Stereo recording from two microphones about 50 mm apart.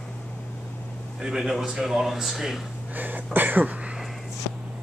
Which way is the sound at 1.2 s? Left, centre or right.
Centre.